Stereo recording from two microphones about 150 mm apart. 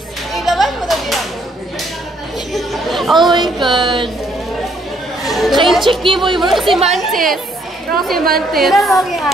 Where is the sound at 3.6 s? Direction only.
30° right (ahead or behind).